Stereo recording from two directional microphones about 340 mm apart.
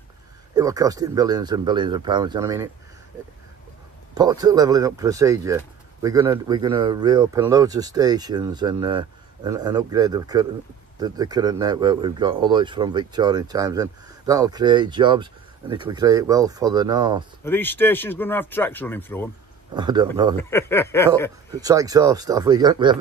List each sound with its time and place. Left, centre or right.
0.6 s speech: centre
4.1 s speech: centre
17.5 s speech: centre
19.7 s speech: centre
20.4 s speech: centre
21.5 s speech: centre